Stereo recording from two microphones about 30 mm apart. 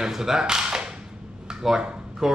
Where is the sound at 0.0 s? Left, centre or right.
Centre.